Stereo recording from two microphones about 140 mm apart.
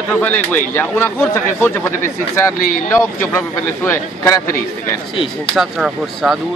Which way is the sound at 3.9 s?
25° left (ahead or behind).